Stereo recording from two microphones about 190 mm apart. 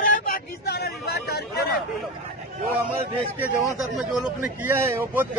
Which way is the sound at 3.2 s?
15° left (ahead or behind).